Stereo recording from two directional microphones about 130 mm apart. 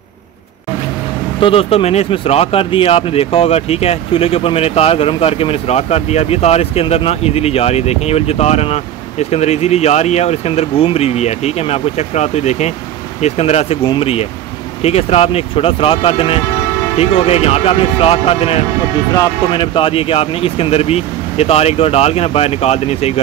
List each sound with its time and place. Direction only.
1.4 s speech: 45° left (ahead or behind)